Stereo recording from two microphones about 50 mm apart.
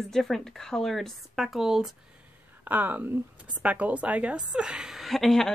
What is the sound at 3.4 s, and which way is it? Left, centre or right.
Speech, right.